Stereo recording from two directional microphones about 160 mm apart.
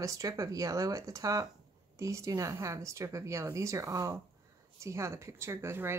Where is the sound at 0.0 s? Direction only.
20° right (ahead or behind).